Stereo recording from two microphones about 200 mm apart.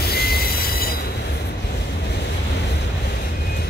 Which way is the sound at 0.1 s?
50° left (ahead or behind).